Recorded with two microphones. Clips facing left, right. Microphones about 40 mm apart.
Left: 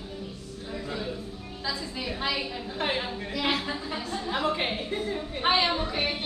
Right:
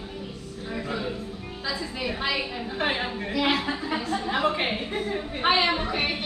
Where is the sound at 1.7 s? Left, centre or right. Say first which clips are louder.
Right 3 dB; centre.